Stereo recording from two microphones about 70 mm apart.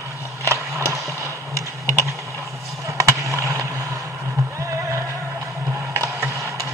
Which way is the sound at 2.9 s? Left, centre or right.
Right.